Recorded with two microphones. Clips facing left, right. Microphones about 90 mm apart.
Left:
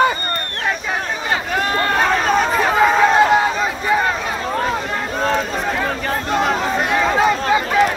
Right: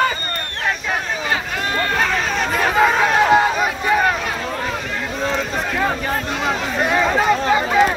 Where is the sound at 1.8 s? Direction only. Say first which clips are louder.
Left 2 dB; 40° left (ahead or behind).